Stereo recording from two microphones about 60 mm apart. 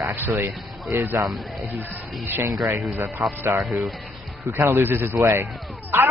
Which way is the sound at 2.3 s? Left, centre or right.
Right.